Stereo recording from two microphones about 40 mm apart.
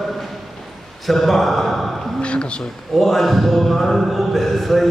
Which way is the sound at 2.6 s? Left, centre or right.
Centre.